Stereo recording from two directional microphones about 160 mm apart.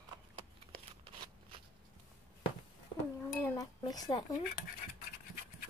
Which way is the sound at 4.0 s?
25° left (ahead or behind).